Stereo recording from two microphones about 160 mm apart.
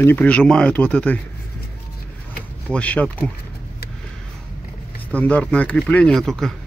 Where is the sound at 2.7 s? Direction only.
10° left (ahead or behind).